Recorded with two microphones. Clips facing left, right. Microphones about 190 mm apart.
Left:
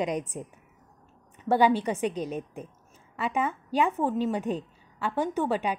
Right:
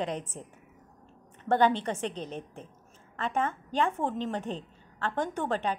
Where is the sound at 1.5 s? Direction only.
10° left (ahead or behind).